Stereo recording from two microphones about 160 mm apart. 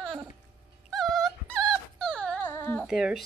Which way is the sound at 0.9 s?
Centre (ahead or behind).